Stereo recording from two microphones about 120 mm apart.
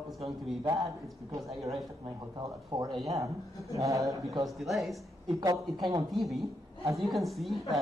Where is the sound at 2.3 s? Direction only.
35° right (ahead or behind).